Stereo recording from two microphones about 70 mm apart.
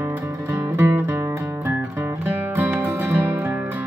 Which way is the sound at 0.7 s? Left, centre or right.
Right.